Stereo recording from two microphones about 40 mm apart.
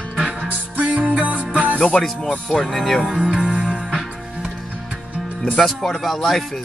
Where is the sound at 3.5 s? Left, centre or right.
Right.